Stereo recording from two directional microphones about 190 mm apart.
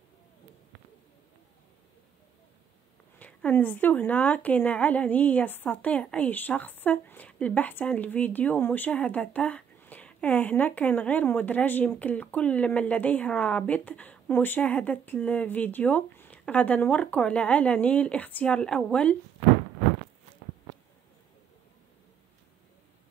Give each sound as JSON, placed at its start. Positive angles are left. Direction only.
{"t": 3.2, "sound": "a woman's voice", "side_deg": 10}